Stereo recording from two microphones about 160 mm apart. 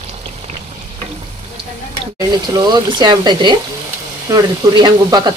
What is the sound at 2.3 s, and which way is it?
Speech, 25° right (ahead or behind).